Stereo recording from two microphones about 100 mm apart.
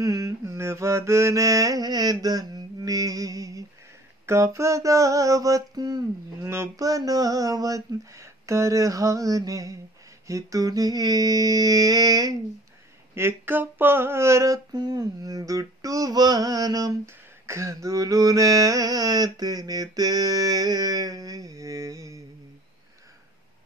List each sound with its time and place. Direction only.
0.0 s mantra: 35° right (ahead or behind)
4.3 s humming: 30° right (ahead or behind)
6.4 s humming: 25° right (ahead or behind)
13.1 s a sound: 25° right (ahead or behind)
14.8 s humming: 45° right (ahead or behind)